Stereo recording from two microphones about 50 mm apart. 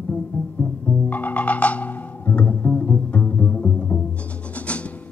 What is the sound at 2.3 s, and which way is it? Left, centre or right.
Pizzicato, left.